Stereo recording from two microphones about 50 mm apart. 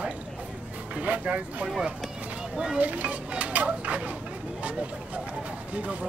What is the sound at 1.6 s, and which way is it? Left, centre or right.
Speech, centre.